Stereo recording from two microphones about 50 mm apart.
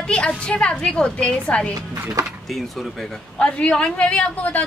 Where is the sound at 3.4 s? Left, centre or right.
Left.